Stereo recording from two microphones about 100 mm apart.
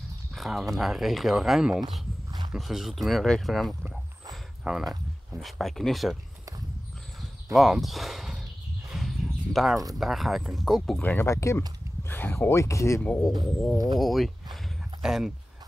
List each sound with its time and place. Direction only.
0.3 s speech: 5° right (ahead or behind)
3.9 s a sound: centre (ahead or behind)
5.4 s speech: centre (ahead or behind)
7.5 s a sound: centre (ahead or behind)
9.9 s speech: centre (ahead or behind)
11.0 s speech: 20° left (ahead or behind)
13.0 s speech: 15° left (ahead or behind)
13.9 s speech: centre (ahead or behind)